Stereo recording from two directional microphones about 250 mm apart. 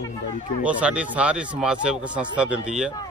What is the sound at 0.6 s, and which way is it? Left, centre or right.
Speech, centre.